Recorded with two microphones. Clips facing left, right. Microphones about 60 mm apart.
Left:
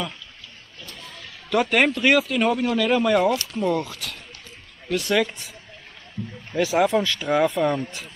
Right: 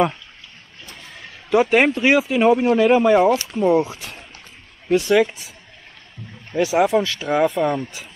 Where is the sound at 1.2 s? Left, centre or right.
Centre.